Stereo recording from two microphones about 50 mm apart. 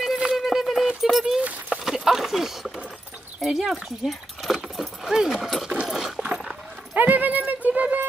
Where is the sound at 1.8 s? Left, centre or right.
Centre.